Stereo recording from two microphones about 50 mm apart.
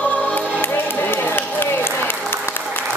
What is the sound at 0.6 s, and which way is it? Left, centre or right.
Applause, left.